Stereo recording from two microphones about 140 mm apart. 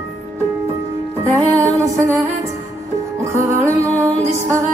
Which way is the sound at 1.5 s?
20° right (ahead or behind).